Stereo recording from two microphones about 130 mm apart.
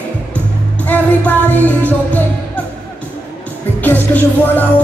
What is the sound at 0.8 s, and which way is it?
Music, 10° left (ahead or behind).